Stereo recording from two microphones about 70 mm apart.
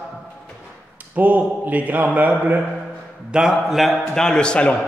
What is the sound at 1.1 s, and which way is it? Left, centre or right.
A man's voice, right.